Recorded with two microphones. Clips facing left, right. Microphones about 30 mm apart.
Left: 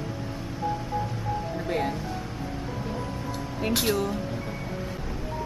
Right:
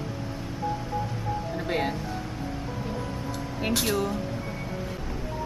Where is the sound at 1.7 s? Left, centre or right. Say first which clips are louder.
Even; right.